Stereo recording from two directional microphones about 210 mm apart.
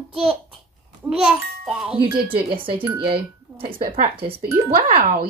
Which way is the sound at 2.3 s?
25° right (ahead or behind).